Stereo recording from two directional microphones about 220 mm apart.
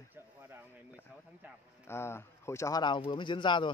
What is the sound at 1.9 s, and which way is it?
Speech, 10° left (ahead or behind).